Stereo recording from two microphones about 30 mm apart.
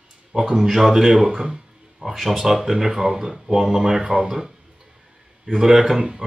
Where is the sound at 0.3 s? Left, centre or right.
Centre.